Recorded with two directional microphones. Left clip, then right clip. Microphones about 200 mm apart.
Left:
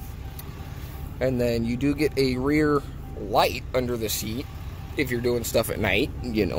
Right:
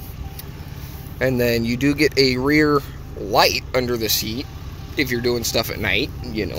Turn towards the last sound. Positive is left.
turn(degrees=35)  # may be behind; listen again after turning